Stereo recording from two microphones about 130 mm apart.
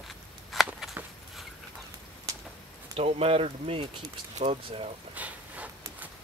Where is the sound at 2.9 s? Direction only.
50° right (ahead or behind).